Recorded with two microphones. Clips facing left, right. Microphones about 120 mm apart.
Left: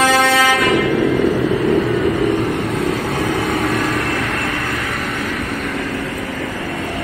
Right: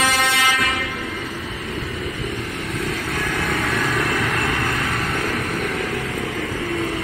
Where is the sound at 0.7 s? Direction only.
70° left (ahead or behind).